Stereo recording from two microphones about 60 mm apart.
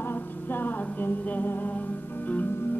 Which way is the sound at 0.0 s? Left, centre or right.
Left.